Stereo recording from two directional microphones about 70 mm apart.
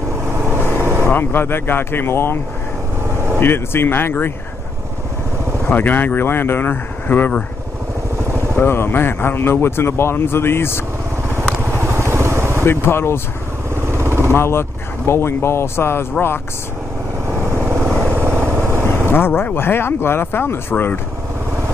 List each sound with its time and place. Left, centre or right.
0.3 s vehicle: right
1.0 s speech: left
5.7 s speech: left
8.5 s speech: left
11.2 s vehicle: right
12.6 s speech: left
13.8 s vehicle: right
14.3 s speech: left
17.4 s vehicle: right
18.9 s speech: left